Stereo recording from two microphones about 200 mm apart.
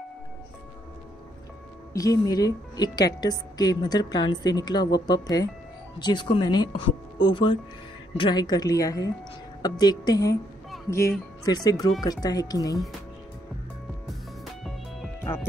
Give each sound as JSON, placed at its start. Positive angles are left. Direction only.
{"t": 2.0, "sound": "speech", "side_deg": 20}
{"t": 14.4, "sound": "music", "side_deg": 0}